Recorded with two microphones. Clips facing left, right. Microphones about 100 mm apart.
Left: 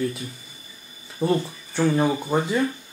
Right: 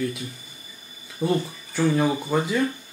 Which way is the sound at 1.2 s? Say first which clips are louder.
Left 1 dB; 30° left (ahead or behind).